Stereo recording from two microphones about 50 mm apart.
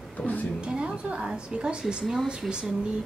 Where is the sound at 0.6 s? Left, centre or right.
Centre.